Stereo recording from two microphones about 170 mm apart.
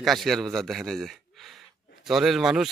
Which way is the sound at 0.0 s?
Centre (ahead or behind).